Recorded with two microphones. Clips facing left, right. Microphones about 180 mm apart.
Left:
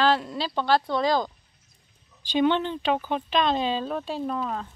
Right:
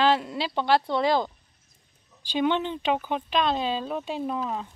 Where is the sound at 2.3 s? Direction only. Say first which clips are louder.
Left 2 dB; 10° right (ahead or behind).